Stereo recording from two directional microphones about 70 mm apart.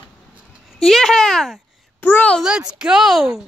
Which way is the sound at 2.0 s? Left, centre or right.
Left.